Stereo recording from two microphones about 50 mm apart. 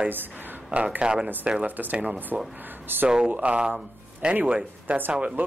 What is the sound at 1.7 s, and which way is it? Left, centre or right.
Speech, right.